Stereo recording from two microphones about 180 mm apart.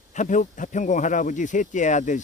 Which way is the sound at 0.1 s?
45° left (ahead or behind).